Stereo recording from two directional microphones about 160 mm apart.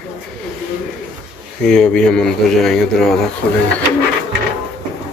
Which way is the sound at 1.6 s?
5° left (ahead or behind).